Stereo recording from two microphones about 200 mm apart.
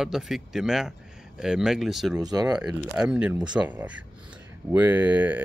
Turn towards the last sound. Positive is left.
turn(degrees=-10)  # may be behind; listen again after turning